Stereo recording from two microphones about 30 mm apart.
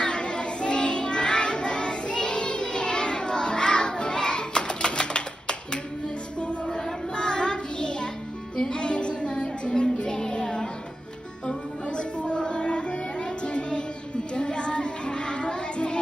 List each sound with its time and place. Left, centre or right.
0.0 s child singing: left
8.5 s music: left
11.8 s music: left
14.3 s child singing: left